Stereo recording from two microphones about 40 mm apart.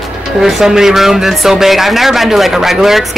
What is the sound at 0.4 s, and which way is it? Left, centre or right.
Speech, centre.